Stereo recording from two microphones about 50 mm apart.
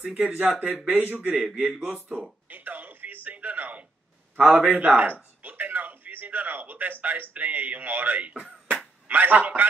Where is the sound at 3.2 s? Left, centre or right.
Right.